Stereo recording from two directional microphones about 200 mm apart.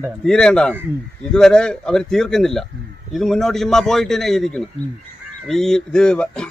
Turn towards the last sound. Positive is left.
turn(degrees=5)  # may be behind; listen again after turning